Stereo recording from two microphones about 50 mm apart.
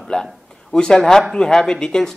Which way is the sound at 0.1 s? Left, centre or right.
Centre.